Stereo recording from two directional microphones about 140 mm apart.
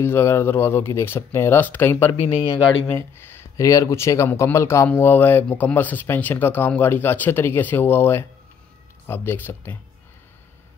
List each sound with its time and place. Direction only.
0.0 s speech: 20° left (ahead or behind)
2.1 s speech: 45° left (ahead or behind)
2.9 s speech: 15° left (ahead or behind)